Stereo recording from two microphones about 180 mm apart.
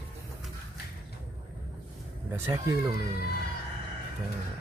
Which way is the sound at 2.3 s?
15° right (ahead or behind).